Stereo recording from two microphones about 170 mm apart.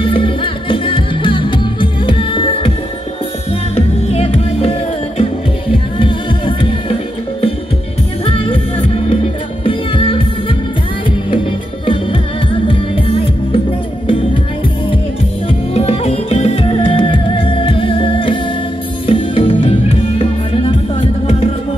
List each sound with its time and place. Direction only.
0.0 s music: 30° left (ahead or behind)
4.1 s music: 35° left (ahead or behind)
8.3 s music: 30° left (ahead or behind)
11.8 s music: 30° left (ahead or behind)
15.7 s music: 40° left (ahead or behind)